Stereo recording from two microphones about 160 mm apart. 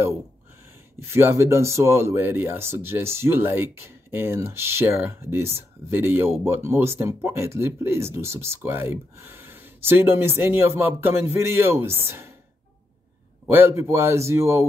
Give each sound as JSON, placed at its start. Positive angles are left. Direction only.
{"t": 0.9, "sound": "speech", "side_deg": -15}
{"t": 13.5, "sound": "speech", "side_deg": -15}